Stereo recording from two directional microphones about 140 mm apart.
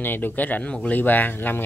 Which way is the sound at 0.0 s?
15° left (ahead or behind).